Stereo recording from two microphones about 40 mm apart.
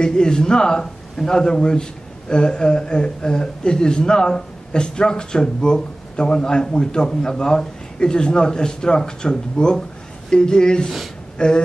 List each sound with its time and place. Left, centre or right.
0.0 s speech: centre